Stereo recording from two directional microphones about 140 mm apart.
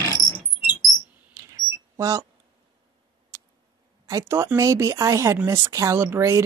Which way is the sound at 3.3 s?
20° right (ahead or behind).